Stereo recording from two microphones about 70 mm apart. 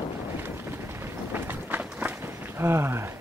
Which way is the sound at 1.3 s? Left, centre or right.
Right.